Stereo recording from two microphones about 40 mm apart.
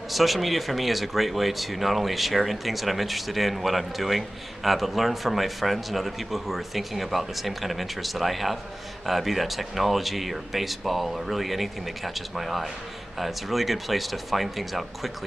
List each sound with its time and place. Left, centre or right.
0.1 s speech: centre